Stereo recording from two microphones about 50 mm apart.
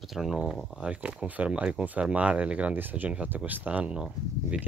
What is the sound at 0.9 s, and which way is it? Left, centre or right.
Speech, right.